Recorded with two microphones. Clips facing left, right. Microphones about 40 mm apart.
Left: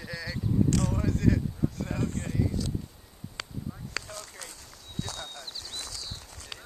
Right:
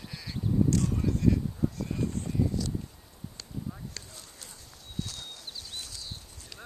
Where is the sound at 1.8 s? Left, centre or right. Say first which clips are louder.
Left 1 dB; left.